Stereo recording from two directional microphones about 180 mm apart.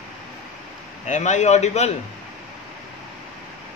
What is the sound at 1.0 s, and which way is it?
Speech, 40° left (ahead or behind).